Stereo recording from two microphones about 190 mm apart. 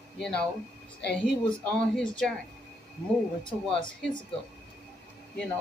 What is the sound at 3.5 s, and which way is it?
Speech, 25° left (ahead or behind).